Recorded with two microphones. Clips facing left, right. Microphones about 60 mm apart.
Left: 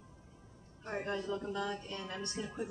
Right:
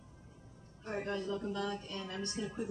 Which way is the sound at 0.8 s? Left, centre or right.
Centre.